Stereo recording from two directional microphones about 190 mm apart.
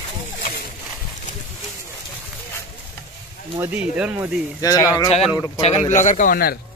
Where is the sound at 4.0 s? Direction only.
5° right (ahead or behind).